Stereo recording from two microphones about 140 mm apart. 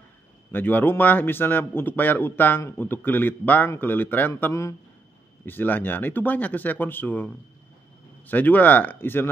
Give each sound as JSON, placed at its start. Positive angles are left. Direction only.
{"t": 0.5, "sound": "a man's voice", "side_deg": 15}
{"t": 8.3, "sound": "a man's voice", "side_deg": 10}